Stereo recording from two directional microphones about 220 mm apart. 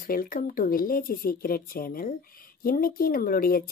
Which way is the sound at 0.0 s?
40° left (ahead or behind).